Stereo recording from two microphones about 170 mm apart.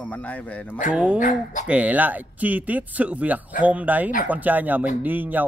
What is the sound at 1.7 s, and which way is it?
Speech, 10° right (ahead or behind).